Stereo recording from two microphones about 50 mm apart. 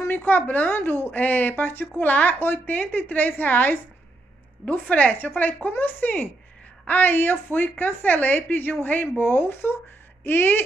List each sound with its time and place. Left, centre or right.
0.1 s a woman's voice: left
0.7 s a woman's voice: left
4.6 s a woman's voice: left